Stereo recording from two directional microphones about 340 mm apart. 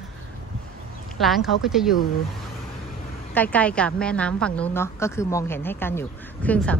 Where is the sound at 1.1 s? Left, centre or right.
Centre.